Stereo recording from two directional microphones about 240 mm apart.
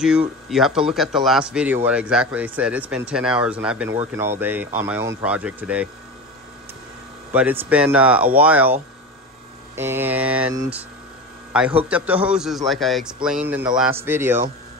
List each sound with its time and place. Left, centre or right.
0.5 s a man's voice: centre
7.3 s speech: centre
9.8 s a man's voice: centre